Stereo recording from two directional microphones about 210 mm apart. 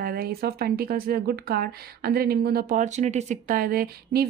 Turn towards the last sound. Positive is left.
turn(degrees=-45)  # may be behind; listen again after turning